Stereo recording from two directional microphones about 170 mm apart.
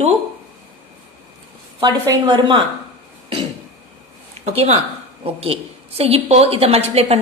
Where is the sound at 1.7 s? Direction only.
25° right (ahead or behind).